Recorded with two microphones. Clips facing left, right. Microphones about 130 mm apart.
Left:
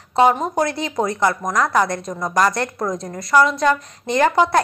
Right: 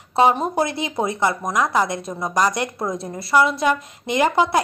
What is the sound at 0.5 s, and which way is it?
A woman's voice, 25° right (ahead or behind).